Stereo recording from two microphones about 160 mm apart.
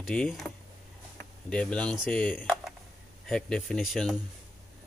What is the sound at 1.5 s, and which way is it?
Speech, 5° left (ahead or behind).